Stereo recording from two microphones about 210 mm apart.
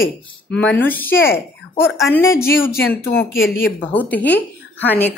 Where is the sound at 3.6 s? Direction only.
10° left (ahead or behind).